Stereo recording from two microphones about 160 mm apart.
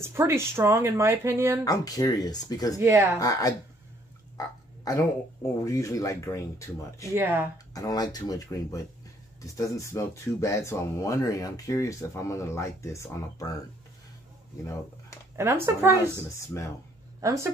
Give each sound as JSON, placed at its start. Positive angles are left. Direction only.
{"t": 0.0, "sound": "speech", "side_deg": -15}
{"t": 1.6, "sound": "speech", "side_deg": 25}
{"t": 2.8, "sound": "speech", "side_deg": -15}
{"t": 3.2, "sound": "speech", "side_deg": 20}
{"t": 4.4, "sound": "a sound", "side_deg": 20}
{"t": 5.6, "sound": "speech", "side_deg": 20}
{"t": 7.2, "sound": "speech", "side_deg": -15}
{"t": 7.7, "sound": "speech", "side_deg": 25}
{"t": 15.3, "sound": "speech", "side_deg": -15}
{"t": 16.2, "sound": "speech", "side_deg": 20}
{"t": 17.2, "sound": "speech", "side_deg": -20}